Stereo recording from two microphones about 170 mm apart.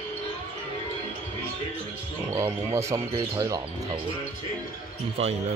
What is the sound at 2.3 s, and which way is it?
Speech, 15° right (ahead or behind).